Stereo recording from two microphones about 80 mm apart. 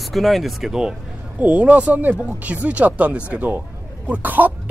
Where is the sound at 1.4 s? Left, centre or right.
Centre.